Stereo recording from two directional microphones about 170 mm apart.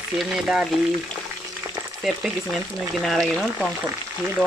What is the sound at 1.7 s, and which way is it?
Speech, 5° right (ahead or behind).